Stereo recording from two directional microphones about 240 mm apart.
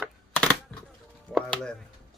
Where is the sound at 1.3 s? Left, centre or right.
Centre.